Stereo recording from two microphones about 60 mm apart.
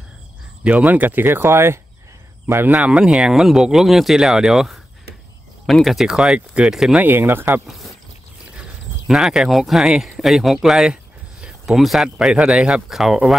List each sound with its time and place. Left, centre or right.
0.7 s speech: right
2.7 s speech: centre
7.0 s speech: right
7.6 s speech: centre
11.4 s a sound: centre
11.8 s speech: centre